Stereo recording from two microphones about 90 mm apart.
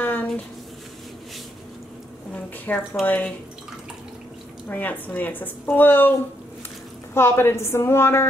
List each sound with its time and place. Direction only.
0.0 s a sound: 20° left (ahead or behind)
2.6 s a woman's voice: 20° left (ahead or behind)
4.6 s a woman's voice: 20° left (ahead or behind)
7.2 s a woman's voice: 25° left (ahead or behind)